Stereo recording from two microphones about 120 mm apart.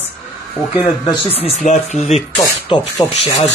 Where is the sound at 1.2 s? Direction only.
55° left (ahead or behind); by 2.2 s 75° left (ahead or behind).